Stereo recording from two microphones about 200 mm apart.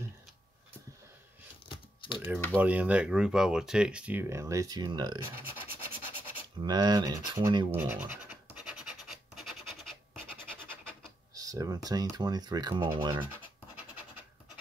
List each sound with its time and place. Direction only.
1.7 s a sound: 25° left (ahead or behind)
2.5 s speech: 5° right (ahead or behind)
6.6 s scratch: 20° right (ahead or behind); by 9.9 s centre (ahead or behind)
11.3 s speech: 15° right (ahead or behind)